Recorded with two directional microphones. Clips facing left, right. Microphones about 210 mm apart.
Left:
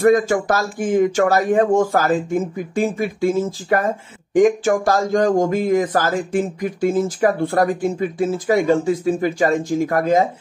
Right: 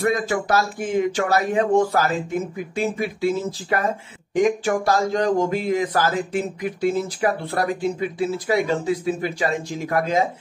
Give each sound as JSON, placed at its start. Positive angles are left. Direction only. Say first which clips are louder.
{"t": 0.0, "sound": "speech", "louder": "left 7 dB", "side_deg": 45}